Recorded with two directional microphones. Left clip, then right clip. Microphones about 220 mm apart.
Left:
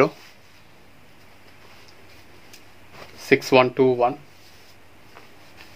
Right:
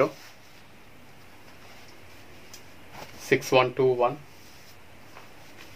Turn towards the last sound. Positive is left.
turn(degrees=45)  # may be behind; listen again after turning